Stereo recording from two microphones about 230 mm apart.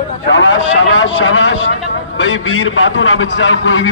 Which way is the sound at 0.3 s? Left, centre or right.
Left.